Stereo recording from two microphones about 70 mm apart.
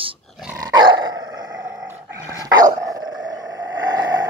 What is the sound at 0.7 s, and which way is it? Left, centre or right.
Dog, right.